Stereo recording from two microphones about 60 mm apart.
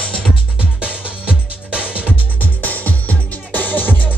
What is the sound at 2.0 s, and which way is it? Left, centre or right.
Music, left.